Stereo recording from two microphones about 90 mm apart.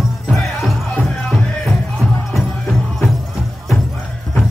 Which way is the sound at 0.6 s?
5° right (ahead or behind).